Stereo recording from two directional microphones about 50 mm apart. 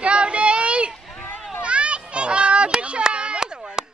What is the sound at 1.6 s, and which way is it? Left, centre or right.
Children playing, right.